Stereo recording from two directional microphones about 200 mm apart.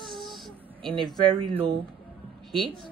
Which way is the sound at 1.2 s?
25° right (ahead or behind).